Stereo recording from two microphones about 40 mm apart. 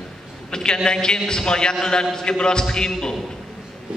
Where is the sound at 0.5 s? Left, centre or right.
Centre.